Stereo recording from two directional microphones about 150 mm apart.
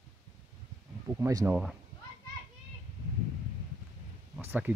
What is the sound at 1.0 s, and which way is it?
Speech, 20° right (ahead or behind).